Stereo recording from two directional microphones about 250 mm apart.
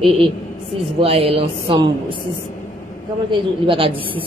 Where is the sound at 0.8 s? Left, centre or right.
Right.